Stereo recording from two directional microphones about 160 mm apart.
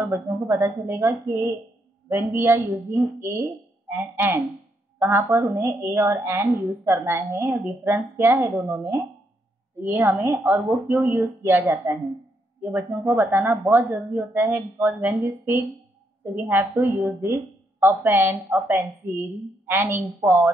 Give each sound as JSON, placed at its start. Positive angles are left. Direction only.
{"t": 0.0, "sound": "a woman's voice", "side_deg": -15}